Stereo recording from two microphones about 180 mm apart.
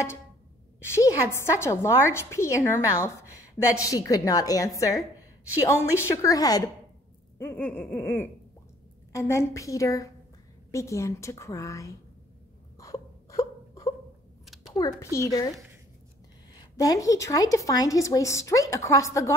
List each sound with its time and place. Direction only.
0.8 s a woman's voice: 15° left (ahead or behind)
12.7 s a sound: 20° left (ahead or behind)
14.7 s a woman's voice: 20° left (ahead or behind)
16.5 s a woman's voice: 20° left (ahead or behind)